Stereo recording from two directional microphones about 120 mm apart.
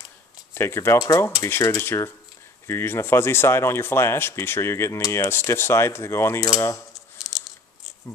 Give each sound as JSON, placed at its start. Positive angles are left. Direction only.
{"t": 0.6, "sound": "speech", "side_deg": 20}